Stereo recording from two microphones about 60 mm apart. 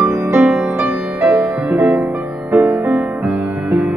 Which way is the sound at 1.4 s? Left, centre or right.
Right.